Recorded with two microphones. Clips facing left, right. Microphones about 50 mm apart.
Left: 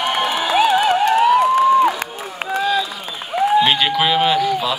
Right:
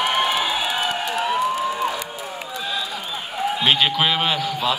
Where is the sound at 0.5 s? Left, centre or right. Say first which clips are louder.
Left 9 dB; left.